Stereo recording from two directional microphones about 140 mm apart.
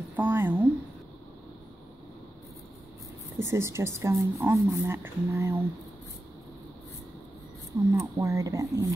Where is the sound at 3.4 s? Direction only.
20° right (ahead or behind).